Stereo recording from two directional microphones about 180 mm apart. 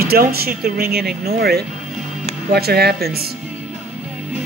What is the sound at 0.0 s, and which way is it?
Speech, 60° right (ahead or behind).